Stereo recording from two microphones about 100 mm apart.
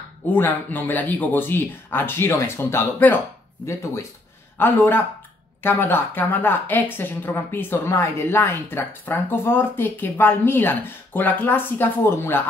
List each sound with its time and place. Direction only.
0.3 s speech: 20° left (ahead or behind)